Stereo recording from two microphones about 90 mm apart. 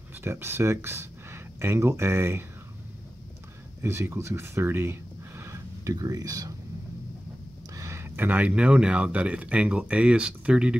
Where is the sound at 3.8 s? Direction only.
30° right (ahead or behind).